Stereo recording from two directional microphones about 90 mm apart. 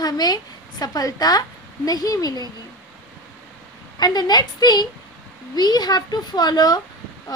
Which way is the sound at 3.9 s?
50° left (ahead or behind).